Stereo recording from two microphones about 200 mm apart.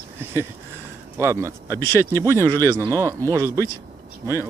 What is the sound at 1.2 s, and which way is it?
Speech, 15° right (ahead or behind).